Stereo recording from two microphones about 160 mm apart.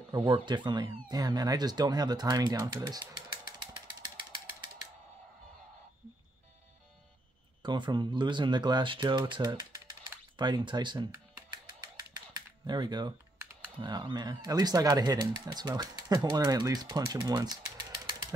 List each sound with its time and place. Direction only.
0.1 s speech: 30° right (ahead or behind)
4.0 s ratchet: 30° right (ahead or behind)
7.6 s speech: 30° right (ahead or behind)